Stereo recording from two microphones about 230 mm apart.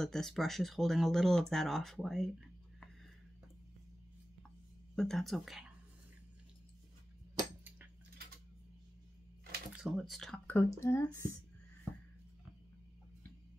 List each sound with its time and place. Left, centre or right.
0.0 s speech: centre
4.9 s speech: centre
7.3 s a sound: centre
9.7 s speech: centre